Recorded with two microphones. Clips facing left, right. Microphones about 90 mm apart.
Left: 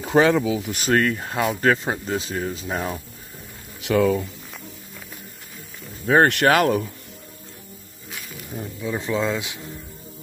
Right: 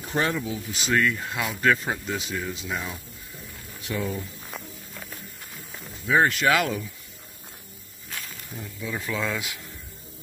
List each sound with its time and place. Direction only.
0.3 s speech: 90° left
0.7 s speech: 45° left (ahead or behind)
3.8 s speech: 85° left
6.0 s speech: 60° left (ahead or behind)
8.5 s speech: 25° left (ahead or behind)